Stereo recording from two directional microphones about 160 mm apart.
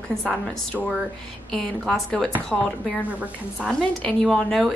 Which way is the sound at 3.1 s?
5° right (ahead or behind).